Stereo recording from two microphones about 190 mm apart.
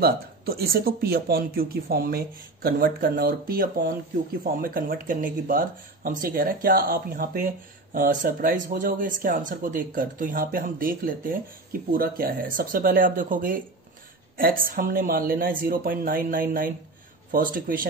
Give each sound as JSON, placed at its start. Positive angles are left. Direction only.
{"t": 0.0, "sound": "speech", "side_deg": -55}